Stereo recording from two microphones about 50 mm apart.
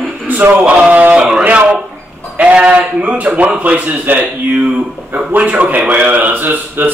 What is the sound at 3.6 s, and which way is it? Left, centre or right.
Speech, right.